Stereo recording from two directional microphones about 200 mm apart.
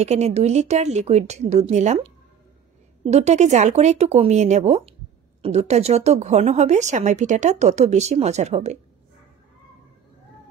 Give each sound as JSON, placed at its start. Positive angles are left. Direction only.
{"t": 0.0, "sound": "a woman's voice", "side_deg": -35}